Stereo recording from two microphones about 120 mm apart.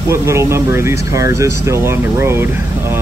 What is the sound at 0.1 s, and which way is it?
Speech, 25° right (ahead or behind).